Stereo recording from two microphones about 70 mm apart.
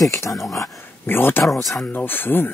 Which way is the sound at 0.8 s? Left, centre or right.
Left.